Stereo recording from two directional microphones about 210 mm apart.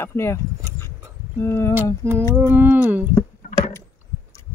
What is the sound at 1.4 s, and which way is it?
Speech, 15° left (ahead or behind).